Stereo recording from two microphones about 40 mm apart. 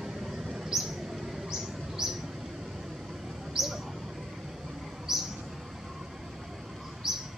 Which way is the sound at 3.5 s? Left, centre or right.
Centre.